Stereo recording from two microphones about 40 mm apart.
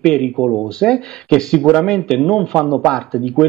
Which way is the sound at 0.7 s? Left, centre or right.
Centre.